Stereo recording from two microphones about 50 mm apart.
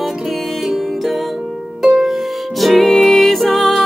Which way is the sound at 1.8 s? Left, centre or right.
Centre.